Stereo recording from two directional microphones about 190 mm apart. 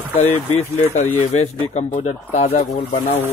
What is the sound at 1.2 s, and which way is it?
Speech, 35° left (ahead or behind).